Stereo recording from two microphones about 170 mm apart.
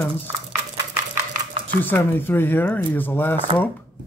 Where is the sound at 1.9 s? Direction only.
10° left (ahead or behind).